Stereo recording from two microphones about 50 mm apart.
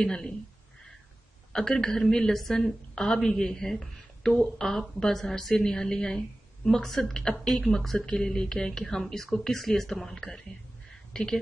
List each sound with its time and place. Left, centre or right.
0.0 s a woman's voice: centre
1.5 s a woman's voice: centre